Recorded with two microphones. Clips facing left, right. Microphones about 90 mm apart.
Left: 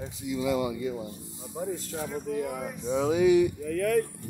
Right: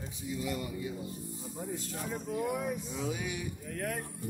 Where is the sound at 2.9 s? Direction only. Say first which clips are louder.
Left 15 dB; 90° left.